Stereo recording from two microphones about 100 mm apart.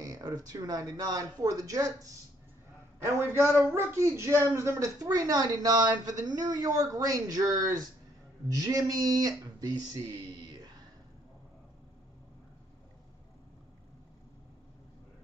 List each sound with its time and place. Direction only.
0.0 s a woman's voice: 40° right (ahead or behind)
3.0 s a man's voice: 25° right (ahead or behind); by 9.8 s 40° right (ahead or behind)